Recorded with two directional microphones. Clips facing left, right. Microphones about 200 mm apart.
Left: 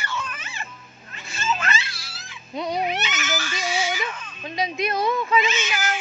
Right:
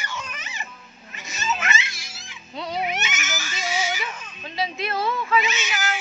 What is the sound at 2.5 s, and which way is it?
Baby cry, 15° left (ahead or behind).